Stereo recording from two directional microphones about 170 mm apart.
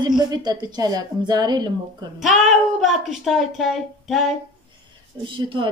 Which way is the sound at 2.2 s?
Centre (ahead or behind).